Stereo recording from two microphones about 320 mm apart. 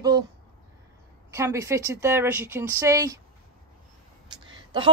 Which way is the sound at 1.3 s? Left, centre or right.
Centre.